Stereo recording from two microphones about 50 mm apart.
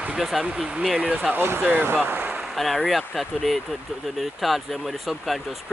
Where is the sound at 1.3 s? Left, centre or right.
Right.